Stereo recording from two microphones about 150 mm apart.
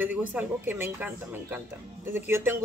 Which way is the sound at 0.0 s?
10° right (ahead or behind).